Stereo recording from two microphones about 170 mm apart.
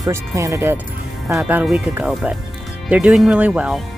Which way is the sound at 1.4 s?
5° right (ahead or behind).